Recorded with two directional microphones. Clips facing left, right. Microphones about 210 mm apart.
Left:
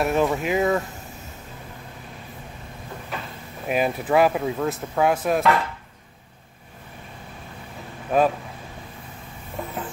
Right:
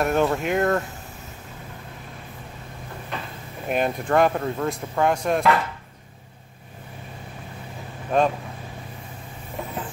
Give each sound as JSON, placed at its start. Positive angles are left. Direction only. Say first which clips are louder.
{"t": 0.0, "sound": "speech", "louder": "even", "side_deg": 0}
{"t": 3.1, "sound": "drawer open or close", "louder": "even", "side_deg": 5}
{"t": 3.6, "sound": "speech", "louder": "left 1 dB", "side_deg": 5}
{"t": 8.1, "sound": "speech", "louder": "left 1 dB", "side_deg": 5}